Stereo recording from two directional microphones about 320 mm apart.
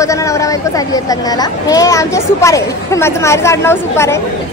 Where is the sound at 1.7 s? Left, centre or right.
Centre.